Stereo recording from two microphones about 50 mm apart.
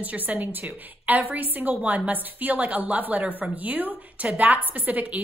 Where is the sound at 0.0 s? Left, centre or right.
Right.